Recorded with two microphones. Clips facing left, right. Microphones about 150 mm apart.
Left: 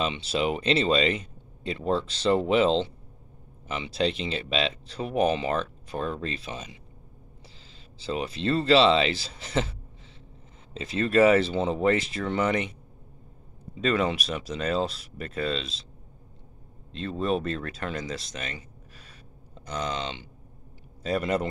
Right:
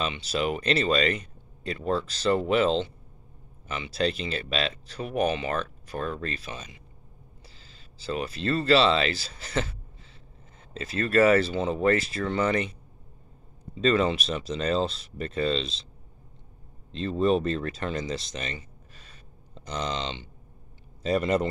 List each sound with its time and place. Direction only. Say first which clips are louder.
0.0 s speech: left 1 dB; 25° left (ahead or behind)
13.7 s speech: right 2 dB; 10° left (ahead or behind)
16.9 s a man's voice: right 4 dB; centre (ahead or behind)